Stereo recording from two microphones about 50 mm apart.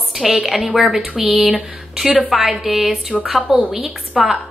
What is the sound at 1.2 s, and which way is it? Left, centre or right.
Speech, right.